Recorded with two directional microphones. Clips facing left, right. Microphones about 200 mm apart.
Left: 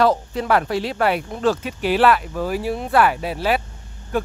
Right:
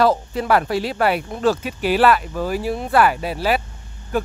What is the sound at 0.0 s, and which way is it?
Speech, 5° right (ahead or behind).